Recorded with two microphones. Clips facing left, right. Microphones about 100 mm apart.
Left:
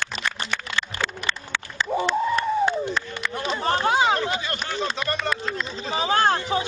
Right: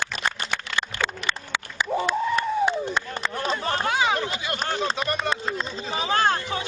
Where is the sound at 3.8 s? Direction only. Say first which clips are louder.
Left 3 dB; 30° left (ahead or behind).